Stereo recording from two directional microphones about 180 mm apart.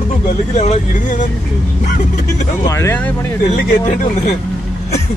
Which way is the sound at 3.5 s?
45° left (ahead or behind).